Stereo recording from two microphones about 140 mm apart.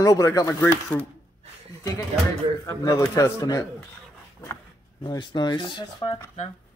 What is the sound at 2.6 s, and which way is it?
Speech, 25° left (ahead or behind).